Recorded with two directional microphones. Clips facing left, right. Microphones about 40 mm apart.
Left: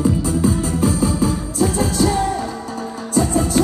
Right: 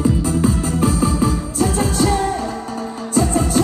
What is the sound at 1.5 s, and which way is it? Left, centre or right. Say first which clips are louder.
Music: left 1 dB; right.